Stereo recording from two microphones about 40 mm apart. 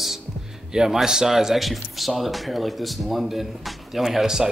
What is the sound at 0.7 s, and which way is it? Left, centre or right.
A man's voice, centre.